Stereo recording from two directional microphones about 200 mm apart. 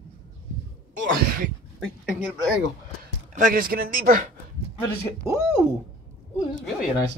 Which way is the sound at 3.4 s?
45° right (ahead or behind).